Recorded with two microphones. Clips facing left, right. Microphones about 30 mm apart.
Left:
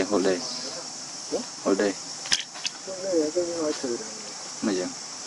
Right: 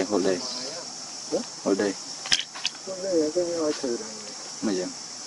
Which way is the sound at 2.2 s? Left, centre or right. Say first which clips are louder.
Right 2 dB; centre.